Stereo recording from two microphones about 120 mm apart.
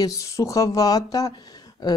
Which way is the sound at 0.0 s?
25° left (ahead or behind).